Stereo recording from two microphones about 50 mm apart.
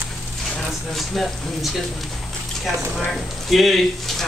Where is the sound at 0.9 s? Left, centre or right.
Centre.